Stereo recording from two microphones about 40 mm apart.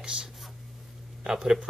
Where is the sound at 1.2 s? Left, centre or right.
Centre.